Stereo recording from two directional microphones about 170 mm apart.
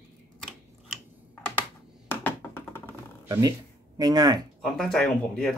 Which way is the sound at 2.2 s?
10° left (ahead or behind).